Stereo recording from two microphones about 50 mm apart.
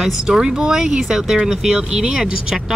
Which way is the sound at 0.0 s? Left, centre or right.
Centre.